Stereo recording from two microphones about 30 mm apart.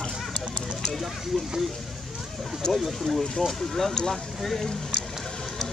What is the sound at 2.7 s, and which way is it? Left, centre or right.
Speech, centre.